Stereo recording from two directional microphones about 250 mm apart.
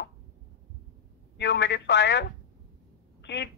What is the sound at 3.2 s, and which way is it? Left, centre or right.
Speech, left.